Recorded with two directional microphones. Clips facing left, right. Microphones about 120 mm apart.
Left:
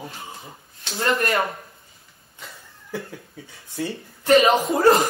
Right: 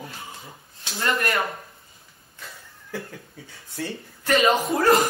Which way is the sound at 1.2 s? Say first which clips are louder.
Left 3 dB; 25° left (ahead or behind).